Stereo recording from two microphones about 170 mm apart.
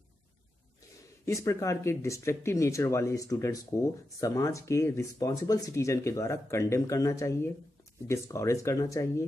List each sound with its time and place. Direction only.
1.2 s speech: 15° left (ahead or behind)